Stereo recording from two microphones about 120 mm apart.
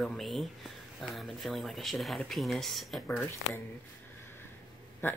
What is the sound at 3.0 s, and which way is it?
Speech, 15° left (ahead or behind).